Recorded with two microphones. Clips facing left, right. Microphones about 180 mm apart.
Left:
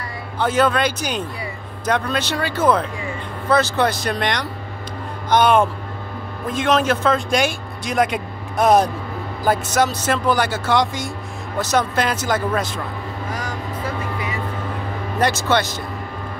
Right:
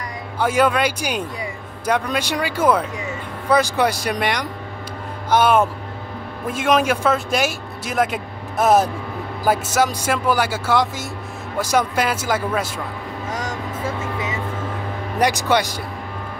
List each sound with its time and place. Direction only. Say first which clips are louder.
0.4 s speech: even; 10° right (ahead or behind)
13.3 s vehicle: right 2 dB; 25° right (ahead or behind)
15.1 s speech: right 1 dB; 15° right (ahead or behind)